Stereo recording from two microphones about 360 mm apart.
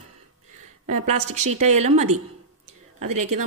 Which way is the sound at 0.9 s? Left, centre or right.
Right.